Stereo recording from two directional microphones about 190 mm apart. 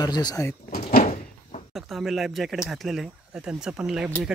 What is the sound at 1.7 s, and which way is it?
Speech, centre (ahead or behind).